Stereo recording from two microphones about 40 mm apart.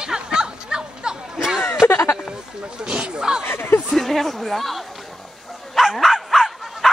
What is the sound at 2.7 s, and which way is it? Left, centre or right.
Speech, right.